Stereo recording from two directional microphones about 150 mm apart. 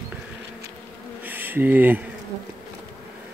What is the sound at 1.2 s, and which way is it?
Bee, 15° right (ahead or behind).